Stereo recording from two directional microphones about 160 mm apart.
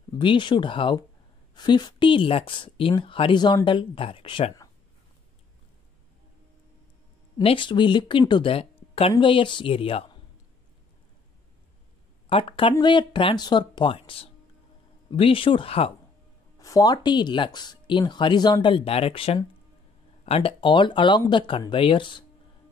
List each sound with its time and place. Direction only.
0.1 s a woman's voice: 30° left (ahead or behind)
7.4 s a woman's voice: 30° left (ahead or behind)
12.3 s a woman's voice: 35° left (ahead or behind)
16.5 s a woman's voice: 20° left (ahead or behind)